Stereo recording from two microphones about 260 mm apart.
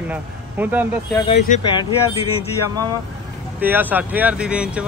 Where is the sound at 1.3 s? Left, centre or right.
Left.